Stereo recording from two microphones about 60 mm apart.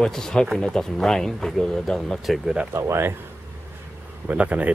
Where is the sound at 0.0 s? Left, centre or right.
Centre.